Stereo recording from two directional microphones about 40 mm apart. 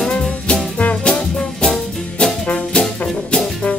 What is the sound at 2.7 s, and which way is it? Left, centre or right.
Music, left.